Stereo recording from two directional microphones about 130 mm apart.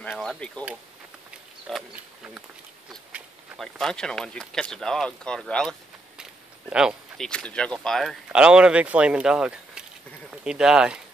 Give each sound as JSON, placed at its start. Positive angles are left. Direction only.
{"t": 0.1, "sound": "chop", "side_deg": -5}
{"t": 1.7, "sound": "speech", "side_deg": 5}
{"t": 3.5, "sound": "speech", "side_deg": 5}
{"t": 6.7, "sound": "speech", "side_deg": -5}
{"t": 7.2, "sound": "speech", "side_deg": 5}
{"t": 8.3, "sound": "speech", "side_deg": -10}